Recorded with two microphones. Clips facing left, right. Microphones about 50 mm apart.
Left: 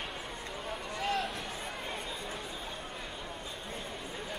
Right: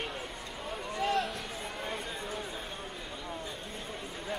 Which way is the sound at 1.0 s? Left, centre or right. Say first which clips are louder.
Right 3 dB; centre.